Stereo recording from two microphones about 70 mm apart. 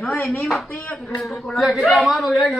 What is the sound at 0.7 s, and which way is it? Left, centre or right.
Speech, left.